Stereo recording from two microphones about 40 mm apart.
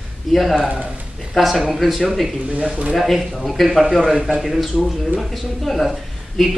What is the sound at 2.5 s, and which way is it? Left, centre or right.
Speech, right.